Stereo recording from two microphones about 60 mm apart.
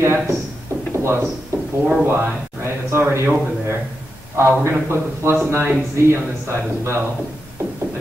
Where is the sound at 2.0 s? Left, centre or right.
Right.